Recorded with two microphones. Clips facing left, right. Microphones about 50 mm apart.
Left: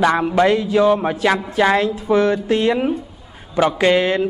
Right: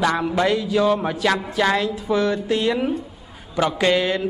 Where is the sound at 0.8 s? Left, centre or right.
Centre.